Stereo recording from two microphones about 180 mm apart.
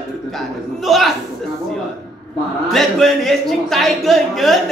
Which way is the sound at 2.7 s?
Centre (ahead or behind).